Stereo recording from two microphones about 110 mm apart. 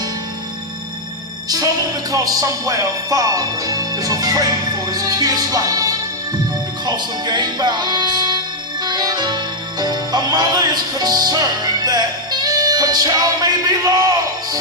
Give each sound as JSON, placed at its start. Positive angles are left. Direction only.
{"t": 1.5, "sound": "speech", "side_deg": -35}
{"t": 8.8, "sound": "music", "side_deg": -40}